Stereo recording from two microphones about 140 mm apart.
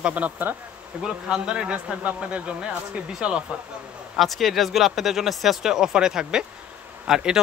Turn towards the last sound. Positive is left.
turn(degrees=-5)  # may be behind; listen again after turning